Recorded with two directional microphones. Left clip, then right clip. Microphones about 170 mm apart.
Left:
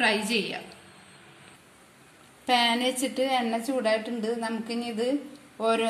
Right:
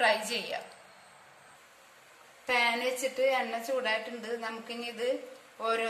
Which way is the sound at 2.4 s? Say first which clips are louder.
Left 4 dB; 55° left (ahead or behind).